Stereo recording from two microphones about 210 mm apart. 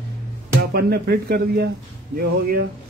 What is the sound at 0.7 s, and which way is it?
Speech, 50° right (ahead or behind).